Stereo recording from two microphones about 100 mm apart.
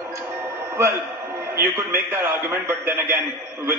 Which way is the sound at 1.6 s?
25° right (ahead or behind).